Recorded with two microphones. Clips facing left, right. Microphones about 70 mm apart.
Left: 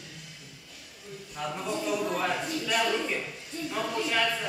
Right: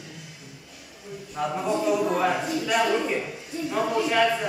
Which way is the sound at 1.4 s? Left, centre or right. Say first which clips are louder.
Right 7 dB; centre.